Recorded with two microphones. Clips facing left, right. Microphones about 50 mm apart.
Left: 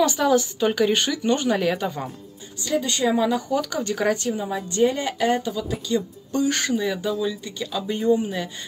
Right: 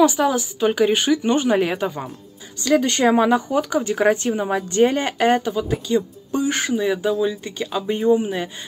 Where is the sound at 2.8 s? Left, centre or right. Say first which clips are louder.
Right 2 dB; right.